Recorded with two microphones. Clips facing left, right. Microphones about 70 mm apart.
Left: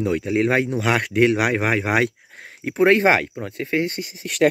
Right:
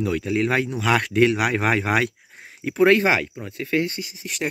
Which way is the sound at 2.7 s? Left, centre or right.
Left.